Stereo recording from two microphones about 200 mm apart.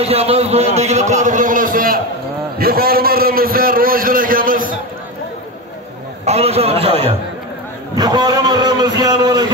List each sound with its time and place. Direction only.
0.0 s a man's voice: 30° right (ahead or behind)
6.2 s a man's voice: 30° right (ahead or behind)